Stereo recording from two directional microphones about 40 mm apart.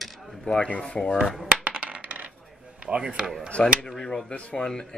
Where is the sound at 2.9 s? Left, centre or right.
Right.